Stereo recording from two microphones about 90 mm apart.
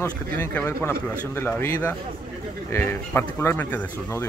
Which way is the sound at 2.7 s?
25° left (ahead or behind).